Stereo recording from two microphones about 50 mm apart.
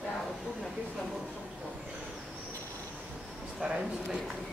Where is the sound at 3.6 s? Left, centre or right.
Centre.